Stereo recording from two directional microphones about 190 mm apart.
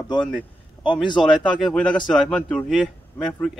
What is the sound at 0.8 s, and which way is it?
Speech, 25° left (ahead or behind).